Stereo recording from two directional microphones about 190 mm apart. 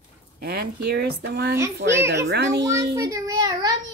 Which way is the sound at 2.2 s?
65° right (ahead or behind).